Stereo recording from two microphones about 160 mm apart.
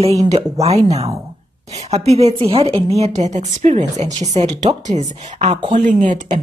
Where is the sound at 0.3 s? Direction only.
40° right (ahead or behind).